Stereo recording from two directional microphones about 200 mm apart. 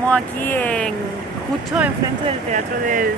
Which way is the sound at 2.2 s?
40° right (ahead or behind).